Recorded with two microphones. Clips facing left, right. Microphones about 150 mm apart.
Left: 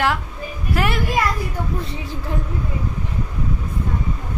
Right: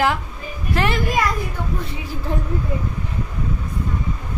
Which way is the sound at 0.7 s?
5° left (ahead or behind).